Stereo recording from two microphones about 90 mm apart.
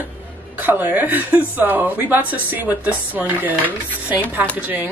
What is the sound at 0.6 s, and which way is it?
A woman's voice, 20° right (ahead or behind).